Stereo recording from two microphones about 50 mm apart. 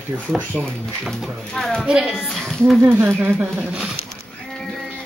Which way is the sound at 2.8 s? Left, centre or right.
Right.